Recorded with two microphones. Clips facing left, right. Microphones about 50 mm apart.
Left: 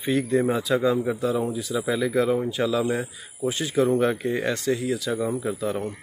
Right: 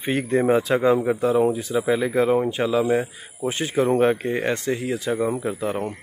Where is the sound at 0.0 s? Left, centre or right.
Right.